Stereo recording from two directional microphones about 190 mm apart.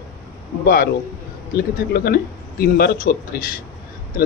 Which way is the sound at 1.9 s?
55° left (ahead or behind).